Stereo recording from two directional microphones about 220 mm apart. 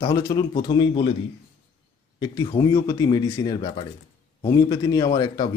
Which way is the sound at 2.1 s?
20° left (ahead or behind).